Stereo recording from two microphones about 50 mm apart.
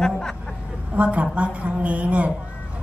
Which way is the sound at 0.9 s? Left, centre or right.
Right.